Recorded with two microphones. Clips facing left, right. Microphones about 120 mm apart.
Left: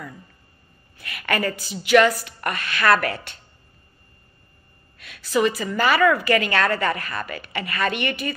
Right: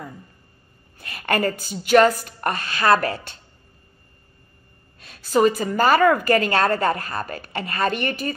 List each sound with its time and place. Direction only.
0.9 s a woman's voice: 45° right (ahead or behind)
2.5 s a woman's voice: 55° left (ahead or behind)
2.8 s a woman's voice: 30° right (ahead or behind)
5.2 s a woman's voice: 45° right (ahead or behind)